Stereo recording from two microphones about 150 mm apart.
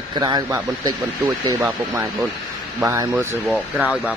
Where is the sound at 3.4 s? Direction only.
5° right (ahead or behind).